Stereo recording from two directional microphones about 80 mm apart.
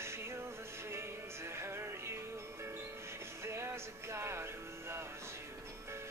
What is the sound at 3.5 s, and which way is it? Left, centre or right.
Music, right.